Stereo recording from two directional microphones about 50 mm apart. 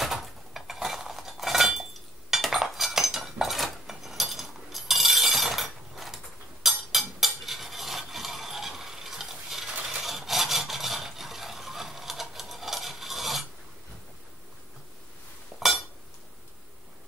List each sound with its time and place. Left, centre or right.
0.0 s cutlery: centre
15.5 s chink: centre